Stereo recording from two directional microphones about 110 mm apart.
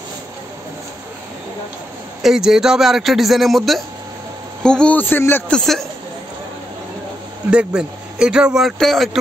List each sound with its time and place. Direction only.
2.2 s a man's voice: 5° right (ahead or behind); by 5.4 s 20° left (ahead or behind)
5.5 s a man's voice: 5° left (ahead or behind)
7.5 s a man's voice: 5° right (ahead or behind)